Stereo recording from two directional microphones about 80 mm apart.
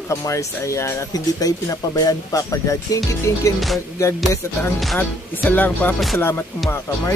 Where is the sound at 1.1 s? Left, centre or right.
Left.